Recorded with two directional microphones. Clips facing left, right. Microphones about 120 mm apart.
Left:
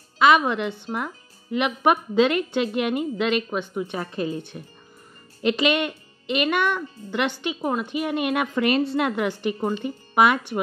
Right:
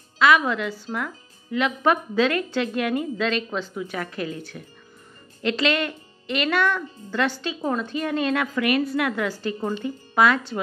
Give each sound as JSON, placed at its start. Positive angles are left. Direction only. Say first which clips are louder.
{"t": 0.2, "sound": "a woman's voice", "louder": "left 1 dB", "side_deg": 25}
{"t": 8.5, "sound": "a woman's voice", "louder": "left 3 dB", "side_deg": 30}